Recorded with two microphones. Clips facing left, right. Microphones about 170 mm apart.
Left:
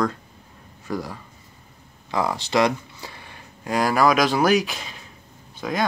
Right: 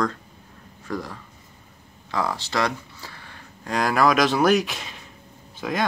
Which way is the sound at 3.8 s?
5° left (ahead or behind).